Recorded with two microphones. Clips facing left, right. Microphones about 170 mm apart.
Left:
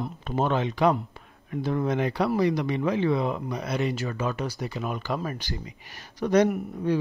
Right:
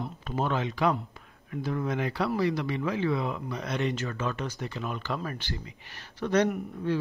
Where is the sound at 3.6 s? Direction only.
5° left (ahead or behind).